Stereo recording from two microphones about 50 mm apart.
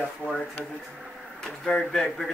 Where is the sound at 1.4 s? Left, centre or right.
Centre.